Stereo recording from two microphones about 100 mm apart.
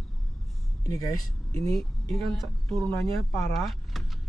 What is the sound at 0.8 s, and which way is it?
Speech, 35° left (ahead or behind).